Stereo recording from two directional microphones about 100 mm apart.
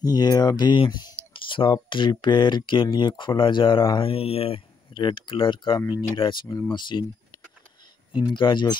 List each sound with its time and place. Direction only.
0.0 s speech: 40° left (ahead or behind); by 4.6 s 75° left (ahead or behind)
4.9 s speech: 55° left (ahead or behind)
8.3 s speech: 50° left (ahead or behind)